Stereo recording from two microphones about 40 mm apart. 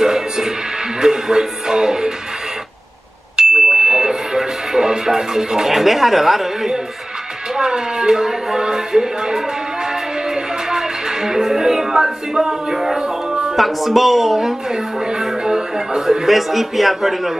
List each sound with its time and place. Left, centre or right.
0.0 s music: centre
1.0 s speech: centre
3.6 s music: centre
7.5 s speech: centre
10.3 s music: centre
13.6 s speech: centre
16.3 s a man's voice: centre